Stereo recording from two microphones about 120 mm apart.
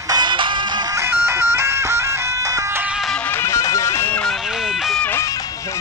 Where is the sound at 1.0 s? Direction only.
20° right (ahead or behind).